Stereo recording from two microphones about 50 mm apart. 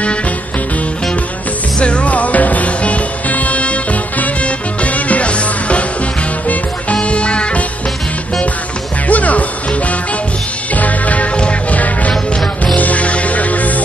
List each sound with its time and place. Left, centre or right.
1.8 s music: left
9.0 s music: left
12.1 s music: centre
12.7 s music: left